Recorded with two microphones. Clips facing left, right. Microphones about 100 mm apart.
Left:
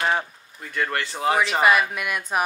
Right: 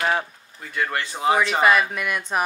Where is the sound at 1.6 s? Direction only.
5° left (ahead or behind).